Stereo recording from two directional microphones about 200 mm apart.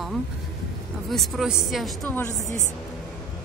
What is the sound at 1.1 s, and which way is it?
A woman's voice, centre (ahead or behind).